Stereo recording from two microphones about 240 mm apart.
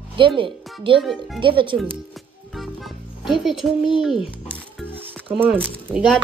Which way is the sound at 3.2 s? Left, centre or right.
Centre.